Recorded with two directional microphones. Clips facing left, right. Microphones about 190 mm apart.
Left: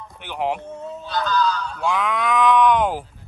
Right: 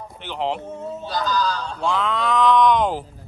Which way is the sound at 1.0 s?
40° right (ahead or behind).